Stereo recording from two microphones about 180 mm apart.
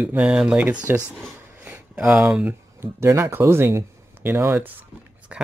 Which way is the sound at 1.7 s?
5° right (ahead or behind).